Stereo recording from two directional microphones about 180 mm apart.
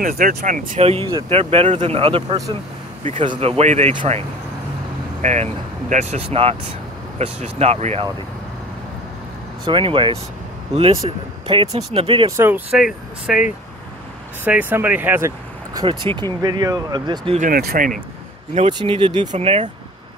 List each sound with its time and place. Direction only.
0.0 s speech: 45° right (ahead or behind)
5.2 s speech: 40° right (ahead or behind)
9.7 s speech: 25° right (ahead or behind)
12.3 s speech: 15° right (ahead or behind)
15.8 s speech: 30° right (ahead or behind)
17.4 s speech: 55° right (ahead or behind)
18.7 s speech: 25° right (ahead or behind)